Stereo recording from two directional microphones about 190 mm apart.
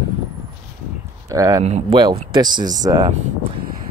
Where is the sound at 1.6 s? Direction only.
30° right (ahead or behind).